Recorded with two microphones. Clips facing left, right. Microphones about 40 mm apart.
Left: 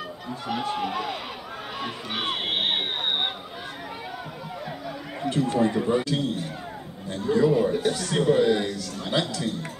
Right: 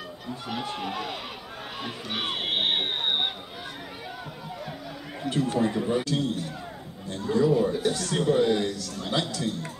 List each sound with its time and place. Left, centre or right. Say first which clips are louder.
0.5 s speech: left 5 dB; centre
5.4 s a man's voice: left 2 dB; centre
7.3 s speech: left 1 dB; left
7.8 s a man's voice: left 2 dB; centre